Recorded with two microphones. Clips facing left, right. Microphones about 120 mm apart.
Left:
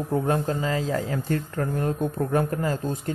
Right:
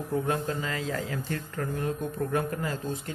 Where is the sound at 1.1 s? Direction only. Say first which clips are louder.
Left 6 dB; 45° left (ahead or behind).